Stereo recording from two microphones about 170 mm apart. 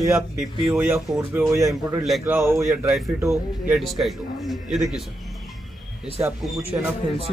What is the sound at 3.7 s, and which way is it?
A man's voice, centre (ahead or behind).